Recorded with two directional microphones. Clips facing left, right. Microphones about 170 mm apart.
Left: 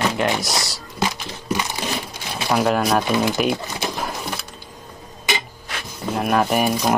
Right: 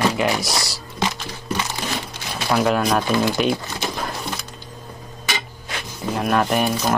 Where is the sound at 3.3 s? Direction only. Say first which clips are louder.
Even; 5° left (ahead or behind).